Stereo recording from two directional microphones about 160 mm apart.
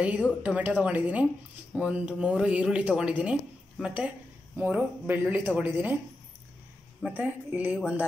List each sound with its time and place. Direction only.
0.0 s speech: 10° right (ahead or behind)
7.0 s speech: 10° right (ahead or behind)